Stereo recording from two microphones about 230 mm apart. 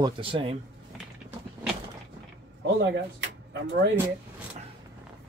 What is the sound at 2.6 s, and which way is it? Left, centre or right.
Speech, right.